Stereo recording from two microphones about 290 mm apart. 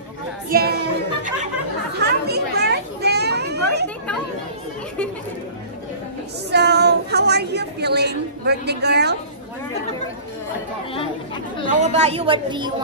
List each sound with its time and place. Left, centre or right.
0.5 s speech: right
2.0 s children playing: right
6.5 s a sound: right
11.6 s a woman's voice: right